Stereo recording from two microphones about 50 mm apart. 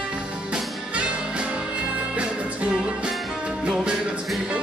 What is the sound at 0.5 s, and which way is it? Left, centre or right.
Music, right.